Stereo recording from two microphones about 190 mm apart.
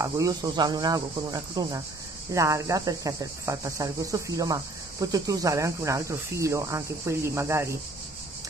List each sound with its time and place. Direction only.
0.0 s speech: 15° right (ahead or behind)